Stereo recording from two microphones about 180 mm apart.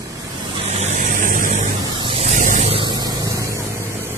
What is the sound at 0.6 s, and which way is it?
Vehicle, 40° right (ahead or behind).